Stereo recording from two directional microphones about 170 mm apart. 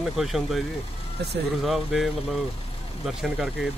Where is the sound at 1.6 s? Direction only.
Centre (ahead or behind).